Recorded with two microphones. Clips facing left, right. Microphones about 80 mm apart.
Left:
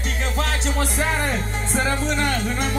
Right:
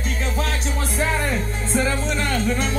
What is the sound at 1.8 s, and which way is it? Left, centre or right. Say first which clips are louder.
Music: left 1 dB; left.